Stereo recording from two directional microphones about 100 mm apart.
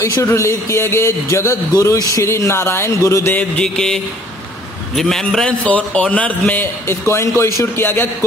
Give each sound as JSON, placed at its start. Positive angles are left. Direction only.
{"t": 0.0, "sound": "speech", "side_deg": 30}
{"t": 3.3, "sound": "a man's voice", "side_deg": 10}